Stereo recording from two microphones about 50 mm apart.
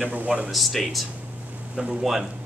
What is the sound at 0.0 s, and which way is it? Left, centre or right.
Speech, right.